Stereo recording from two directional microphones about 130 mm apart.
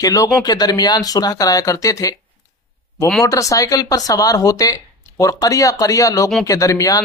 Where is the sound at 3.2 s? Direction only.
25° left (ahead or behind).